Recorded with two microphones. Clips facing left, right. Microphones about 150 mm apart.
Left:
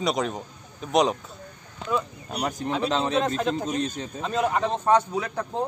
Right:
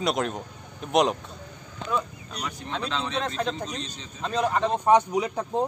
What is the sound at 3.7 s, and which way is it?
Speech, 50° left (ahead or behind).